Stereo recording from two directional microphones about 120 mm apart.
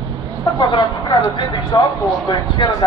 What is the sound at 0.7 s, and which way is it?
Speech, 40° left (ahead or behind).